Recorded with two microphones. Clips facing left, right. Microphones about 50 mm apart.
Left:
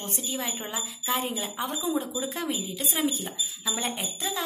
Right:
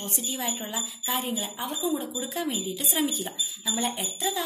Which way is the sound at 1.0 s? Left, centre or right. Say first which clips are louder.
Left 1 dB; left.